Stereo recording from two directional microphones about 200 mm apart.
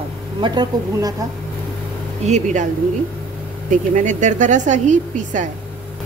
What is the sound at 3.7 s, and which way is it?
A woman's voice, 40° right (ahead or behind).